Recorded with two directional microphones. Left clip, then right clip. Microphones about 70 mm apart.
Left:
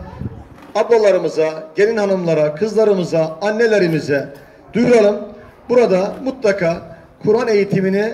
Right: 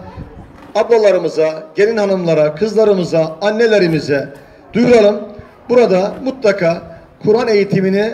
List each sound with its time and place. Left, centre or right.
0.7 s a man's voice: left